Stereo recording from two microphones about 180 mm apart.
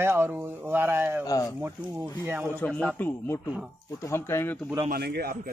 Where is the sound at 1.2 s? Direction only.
20° left (ahead or behind).